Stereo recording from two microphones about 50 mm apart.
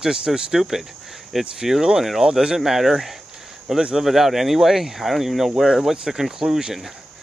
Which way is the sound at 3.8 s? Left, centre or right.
Centre.